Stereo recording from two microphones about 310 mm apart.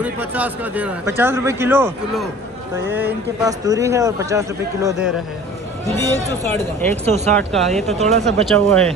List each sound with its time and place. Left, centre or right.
0.0 s a man's voice: centre
6.5 s speech: centre
7.1 s speech: right
7.3 s speech: centre
7.7 s speech: right
8.5 s speech: centre